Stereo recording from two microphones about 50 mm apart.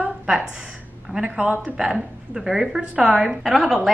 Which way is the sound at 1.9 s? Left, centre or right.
Centre.